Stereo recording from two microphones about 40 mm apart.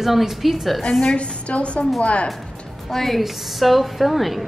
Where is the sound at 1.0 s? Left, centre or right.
Left.